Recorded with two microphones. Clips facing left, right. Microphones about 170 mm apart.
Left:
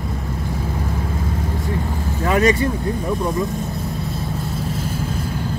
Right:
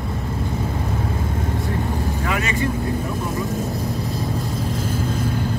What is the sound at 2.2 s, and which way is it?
Vehicle, 40° left (ahead or behind).